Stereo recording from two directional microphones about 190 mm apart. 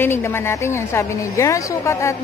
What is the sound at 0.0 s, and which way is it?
A woman's voice, 10° left (ahead or behind).